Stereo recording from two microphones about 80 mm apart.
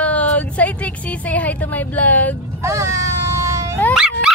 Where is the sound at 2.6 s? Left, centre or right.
Right.